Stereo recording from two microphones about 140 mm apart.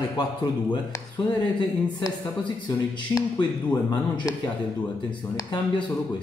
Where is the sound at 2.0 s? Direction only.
35° left (ahead or behind).